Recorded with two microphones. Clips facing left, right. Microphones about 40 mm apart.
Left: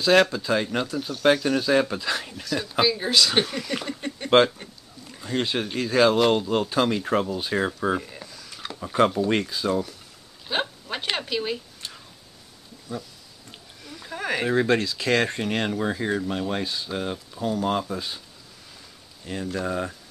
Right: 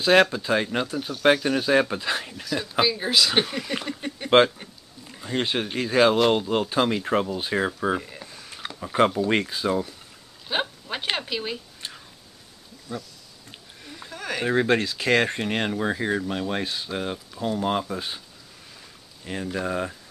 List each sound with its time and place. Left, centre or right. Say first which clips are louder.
0.0 s speech: even; centre
6.1 s speech: even; centre
8.3 s a sound: right 1 dB; right
8.9 s speech: even; right
10.5 s hiccup: even; centre
11.1 s speech: left 2 dB; centre
13.5 s a sound: even; centre
14.0 s a sound: left 4 dB; centre
14.5 s speech: right 1 dB; centre
16.6 s speech: even; right
16.9 s speech: even; centre
19.2 s speech: even; centre